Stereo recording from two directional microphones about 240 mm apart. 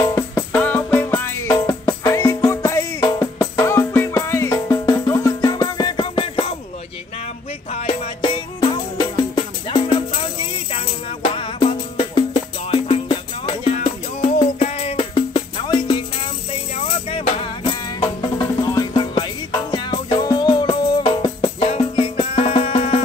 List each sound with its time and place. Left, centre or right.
0.0 s music: centre
7.7 s music: left
11.3 s music: left